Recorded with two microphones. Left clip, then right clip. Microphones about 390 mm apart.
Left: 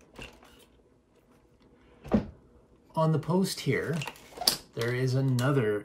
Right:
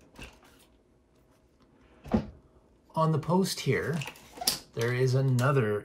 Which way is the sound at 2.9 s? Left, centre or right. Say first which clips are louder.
Right 1 dB; centre.